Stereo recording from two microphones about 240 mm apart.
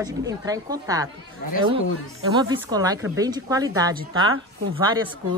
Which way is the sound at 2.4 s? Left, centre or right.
Centre.